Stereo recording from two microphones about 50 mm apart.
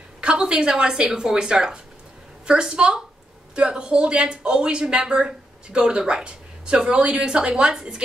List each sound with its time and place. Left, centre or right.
0.2 s speech: centre